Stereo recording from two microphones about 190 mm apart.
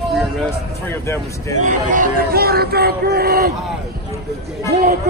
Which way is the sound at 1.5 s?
40° right (ahead or behind).